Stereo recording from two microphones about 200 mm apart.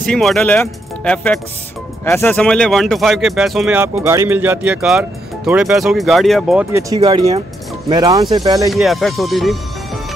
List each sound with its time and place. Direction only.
0.0 s speech: centre (ahead or behind)
7.0 s speech: 25° right (ahead or behind)
8.6 s speech: centre (ahead or behind)